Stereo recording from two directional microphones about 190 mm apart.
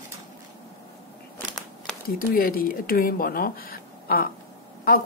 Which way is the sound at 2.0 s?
50° left (ahead or behind).